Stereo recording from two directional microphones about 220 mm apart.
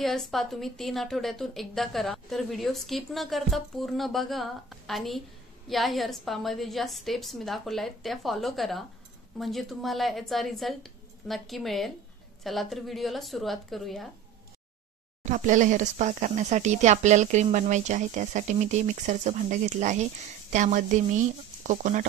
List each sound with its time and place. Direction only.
0.0 s a woman's voice: centre (ahead or behind)
15.2 s speech: 35° right (ahead or behind)